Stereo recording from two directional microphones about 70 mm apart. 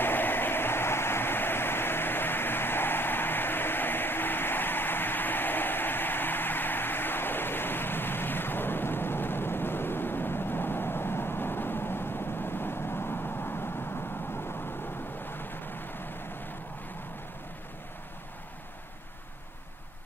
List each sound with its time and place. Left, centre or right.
0.0 s vehicle: left